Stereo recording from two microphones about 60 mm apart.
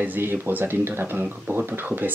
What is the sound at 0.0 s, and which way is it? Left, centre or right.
Speech, right.